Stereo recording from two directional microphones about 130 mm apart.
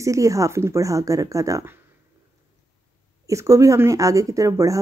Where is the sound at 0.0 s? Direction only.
25° right (ahead or behind).